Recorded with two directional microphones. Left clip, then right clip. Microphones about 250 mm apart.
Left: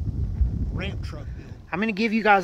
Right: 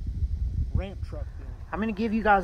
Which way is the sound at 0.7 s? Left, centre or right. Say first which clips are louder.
Left 3 dB; left.